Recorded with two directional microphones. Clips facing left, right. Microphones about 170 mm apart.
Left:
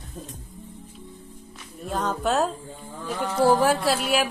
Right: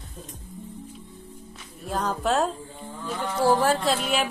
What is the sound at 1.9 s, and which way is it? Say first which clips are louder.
A woman's voice: even; centre (ahead or behind).